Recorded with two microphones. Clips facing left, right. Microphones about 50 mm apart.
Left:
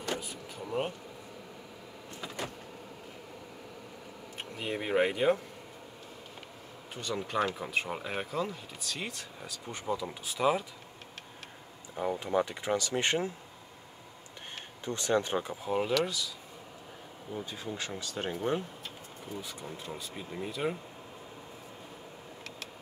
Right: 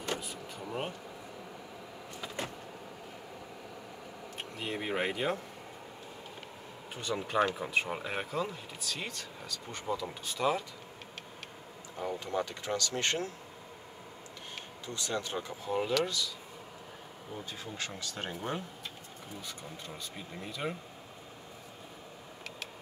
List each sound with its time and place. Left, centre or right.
0.2 s vehicle: centre
4.4 s speech: centre
7.0 s speech: centre
12.0 s speech: centre
14.9 s speech: left
15.5 s speech: centre
17.5 s speech: centre
19.4 s speech: centre